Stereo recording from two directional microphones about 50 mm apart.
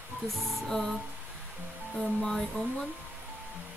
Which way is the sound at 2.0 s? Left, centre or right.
Centre.